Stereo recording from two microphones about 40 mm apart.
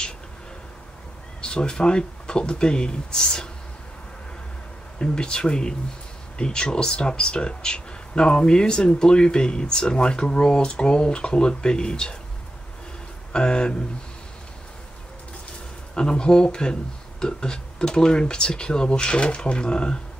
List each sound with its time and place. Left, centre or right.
1.4 s speech: left
4.9 s speech: left
13.3 s speech: left
15.9 s speech: left